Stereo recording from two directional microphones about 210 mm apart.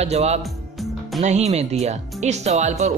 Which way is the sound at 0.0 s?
30° right (ahead or behind).